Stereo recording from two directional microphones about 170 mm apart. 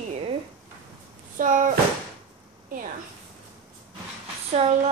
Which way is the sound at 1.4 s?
50° right (ahead or behind).